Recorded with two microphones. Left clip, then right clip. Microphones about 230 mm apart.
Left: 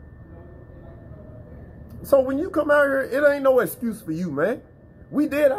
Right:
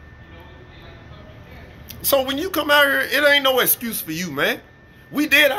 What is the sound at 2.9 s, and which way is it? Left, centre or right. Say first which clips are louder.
A man's voice: right 3 dB; right.